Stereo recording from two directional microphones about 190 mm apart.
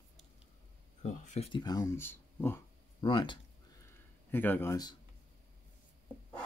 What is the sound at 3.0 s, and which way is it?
Speech, 25° left (ahead or behind).